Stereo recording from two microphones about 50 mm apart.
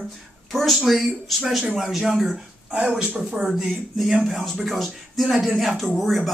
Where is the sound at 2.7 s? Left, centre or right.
Centre.